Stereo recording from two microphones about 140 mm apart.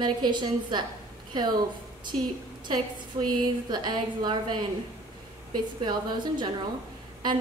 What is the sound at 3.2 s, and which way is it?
A woman's voice, 30° right (ahead or behind).